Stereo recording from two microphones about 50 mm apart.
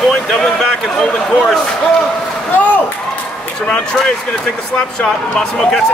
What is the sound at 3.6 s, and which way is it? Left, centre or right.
Speech, centre.